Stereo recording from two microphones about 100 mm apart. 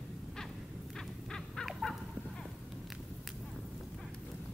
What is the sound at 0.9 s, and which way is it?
Crow, 5° left (ahead or behind).